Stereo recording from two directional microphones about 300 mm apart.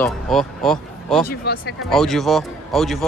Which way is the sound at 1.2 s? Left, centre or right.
Left.